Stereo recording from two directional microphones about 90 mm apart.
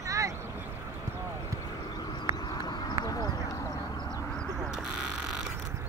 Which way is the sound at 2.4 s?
50° left (ahead or behind).